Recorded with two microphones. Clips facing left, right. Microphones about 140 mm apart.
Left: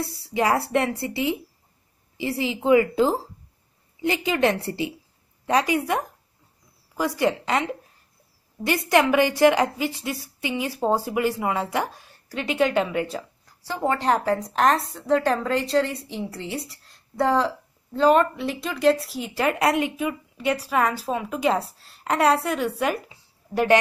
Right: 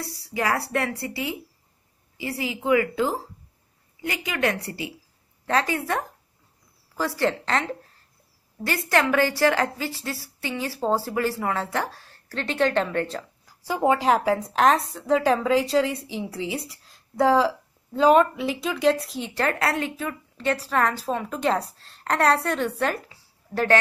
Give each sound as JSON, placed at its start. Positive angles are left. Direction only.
{"t": 0.0, "sound": "speech", "side_deg": 25}
{"t": 5.5, "sound": "a woman's voice", "side_deg": 15}
{"t": 13.5, "sound": "a woman's voice", "side_deg": -10}